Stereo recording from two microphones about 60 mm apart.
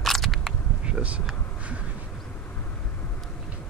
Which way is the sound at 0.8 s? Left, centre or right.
Right.